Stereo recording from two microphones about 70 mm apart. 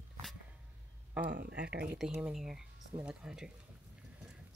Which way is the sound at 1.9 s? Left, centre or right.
Centre.